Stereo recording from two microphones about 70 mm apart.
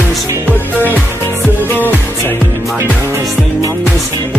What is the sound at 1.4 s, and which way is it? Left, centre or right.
Music, left.